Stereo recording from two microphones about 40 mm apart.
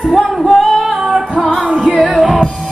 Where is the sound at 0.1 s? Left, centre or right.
Centre.